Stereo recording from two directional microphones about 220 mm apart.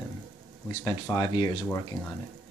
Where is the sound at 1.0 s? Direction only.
15° left (ahead or behind).